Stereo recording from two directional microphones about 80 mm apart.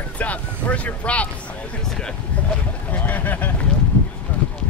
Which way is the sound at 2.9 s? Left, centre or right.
Centre.